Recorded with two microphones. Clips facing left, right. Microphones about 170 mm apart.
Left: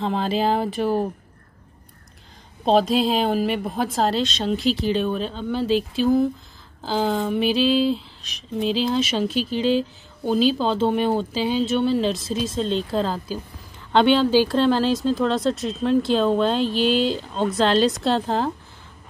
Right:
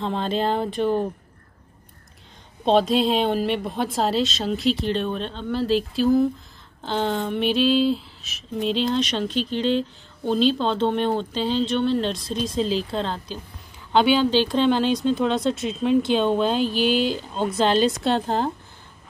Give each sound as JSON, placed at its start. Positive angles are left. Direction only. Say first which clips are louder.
{"t": 0.0, "sound": "speech", "louder": "left 2 dB", "side_deg": 5}
{"t": 2.6, "sound": "speech", "louder": "even", "side_deg": 0}